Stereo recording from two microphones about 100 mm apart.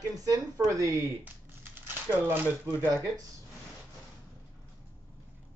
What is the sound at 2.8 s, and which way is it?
Speech, 30° right (ahead or behind).